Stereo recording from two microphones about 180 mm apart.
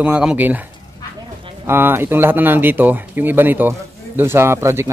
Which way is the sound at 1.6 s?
10° right (ahead or behind).